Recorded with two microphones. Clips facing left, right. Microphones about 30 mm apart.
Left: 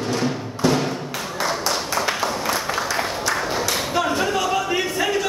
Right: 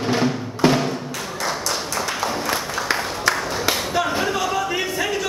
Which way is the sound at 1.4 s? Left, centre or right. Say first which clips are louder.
Left 2 dB; centre.